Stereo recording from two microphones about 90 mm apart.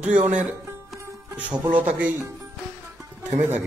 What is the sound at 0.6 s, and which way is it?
Music, 30° right (ahead or behind).